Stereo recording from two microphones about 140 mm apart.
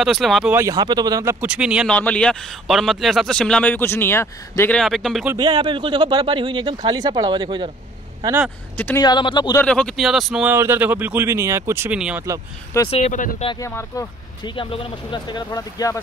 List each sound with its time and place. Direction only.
0.0 s speech: centre (ahead or behind)
0.5 s speech: 20° right (ahead or behind)
1.4 s speech: 5° right (ahead or behind)
1.9 s speech: 10° left (ahead or behind)
4.7 s speech: centre (ahead or behind)
5.4 s speech: 35° right (ahead or behind)
8.7 s speech: 15° left (ahead or behind)
9.0 s speech: 35° left (ahead or behind)
9.6 s speech: 5° left (ahead or behind)
10.5 s speech: 15° right (ahead or behind)
12.9 s speech: 60° left (ahead or behind)
13.6 s speech: 20° left (ahead or behind)
14.4 s speech: 35° left (ahead or behind)